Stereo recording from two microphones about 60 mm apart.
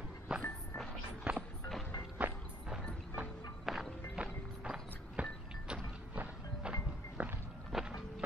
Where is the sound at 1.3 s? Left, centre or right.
Right.